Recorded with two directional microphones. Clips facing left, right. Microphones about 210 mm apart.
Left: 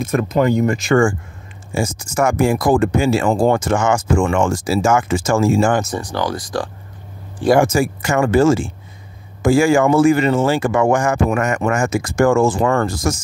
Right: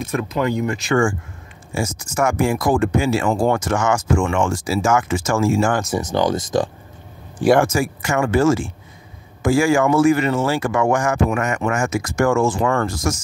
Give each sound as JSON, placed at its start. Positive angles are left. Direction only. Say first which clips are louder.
{"t": 0.1, "sound": "speech", "louder": "left 5 dB", "side_deg": 45}
{"t": 1.7, "sound": "speech", "louder": "left 3 dB", "side_deg": 30}
{"t": 5.9, "sound": "speech", "louder": "right 3 dB", "side_deg": -20}
{"t": 7.7, "sound": "speech", "louder": "left 3 dB", "side_deg": 35}
{"t": 11.2, "sound": "speech", "louder": "left 3 dB", "side_deg": 40}